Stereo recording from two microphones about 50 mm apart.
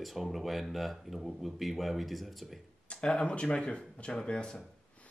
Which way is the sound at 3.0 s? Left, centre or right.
Centre.